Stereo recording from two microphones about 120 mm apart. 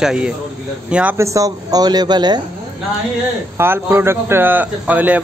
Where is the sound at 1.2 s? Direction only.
25° right (ahead or behind).